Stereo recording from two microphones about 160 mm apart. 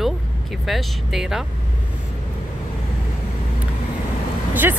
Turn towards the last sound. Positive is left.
turn(degrees=-15)  # may be behind; listen again after turning